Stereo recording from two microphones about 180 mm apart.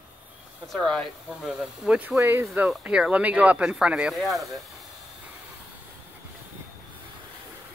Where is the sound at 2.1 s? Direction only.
15° right (ahead or behind).